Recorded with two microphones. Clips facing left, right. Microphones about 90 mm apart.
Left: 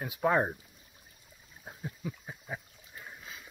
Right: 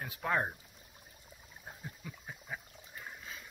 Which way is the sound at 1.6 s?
15° left (ahead or behind).